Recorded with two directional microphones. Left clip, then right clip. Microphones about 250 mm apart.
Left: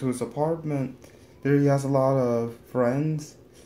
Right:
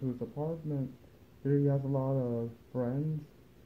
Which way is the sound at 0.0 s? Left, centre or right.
Left.